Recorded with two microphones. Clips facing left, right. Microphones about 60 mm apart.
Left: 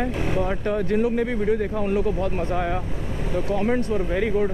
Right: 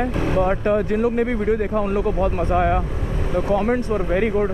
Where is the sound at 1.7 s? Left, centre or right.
Right.